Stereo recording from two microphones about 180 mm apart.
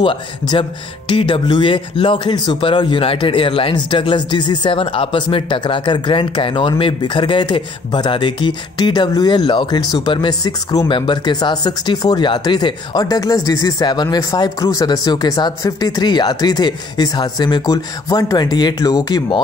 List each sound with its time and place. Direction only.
0.0 s speech: 30° left (ahead or behind)